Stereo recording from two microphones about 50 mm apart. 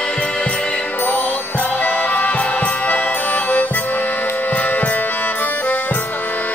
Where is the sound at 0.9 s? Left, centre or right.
Left.